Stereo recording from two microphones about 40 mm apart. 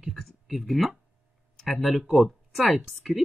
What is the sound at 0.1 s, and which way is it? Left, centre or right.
Speech, centre.